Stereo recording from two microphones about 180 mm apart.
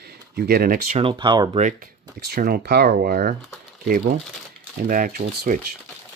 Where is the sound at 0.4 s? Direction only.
60° right (ahead or behind).